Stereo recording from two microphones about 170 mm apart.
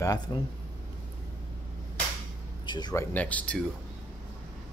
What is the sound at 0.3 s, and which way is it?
Speech, 25° left (ahead or behind).